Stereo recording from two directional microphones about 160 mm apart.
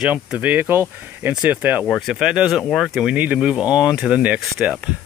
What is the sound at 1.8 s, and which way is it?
Speech, centre (ahead or behind).